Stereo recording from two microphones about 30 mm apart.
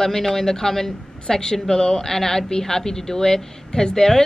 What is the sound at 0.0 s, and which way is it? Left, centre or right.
A woman's voice, centre.